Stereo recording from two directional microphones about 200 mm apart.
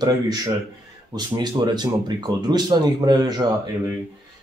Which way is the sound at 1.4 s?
20° right (ahead or behind).